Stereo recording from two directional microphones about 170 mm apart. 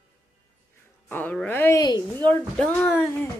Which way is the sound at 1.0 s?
10° left (ahead or behind).